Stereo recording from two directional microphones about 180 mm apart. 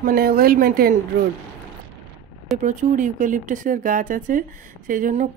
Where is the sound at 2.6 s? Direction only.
45° right (ahead or behind).